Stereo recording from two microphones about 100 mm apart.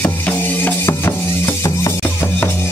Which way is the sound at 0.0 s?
20° left (ahead or behind).